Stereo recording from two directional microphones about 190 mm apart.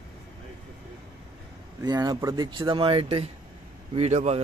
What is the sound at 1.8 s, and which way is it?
A man's voice, 20° right (ahead or behind).